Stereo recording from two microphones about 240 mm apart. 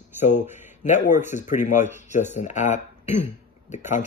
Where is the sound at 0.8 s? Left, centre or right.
Left.